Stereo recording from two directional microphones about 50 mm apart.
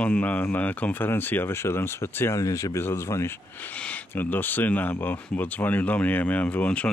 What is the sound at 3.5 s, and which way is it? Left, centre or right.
Speech, left.